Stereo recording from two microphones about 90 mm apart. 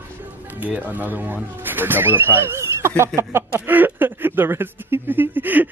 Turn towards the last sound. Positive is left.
turn(degrees=-20)  # may be behind; listen again after turning